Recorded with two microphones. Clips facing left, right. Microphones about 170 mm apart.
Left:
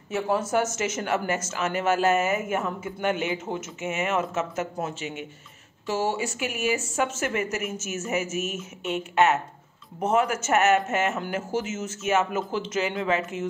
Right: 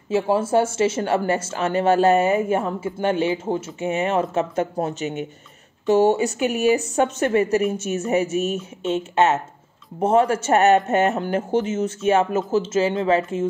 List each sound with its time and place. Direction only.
0.1 s speech: 30° right (ahead or behind)